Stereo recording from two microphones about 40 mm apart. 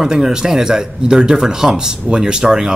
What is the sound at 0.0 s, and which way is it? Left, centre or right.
Speech, centre.